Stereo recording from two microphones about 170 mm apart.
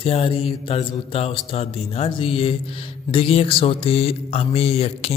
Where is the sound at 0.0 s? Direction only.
35° left (ahead or behind).